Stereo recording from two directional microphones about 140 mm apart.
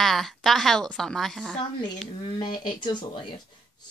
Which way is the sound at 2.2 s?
35° left (ahead or behind).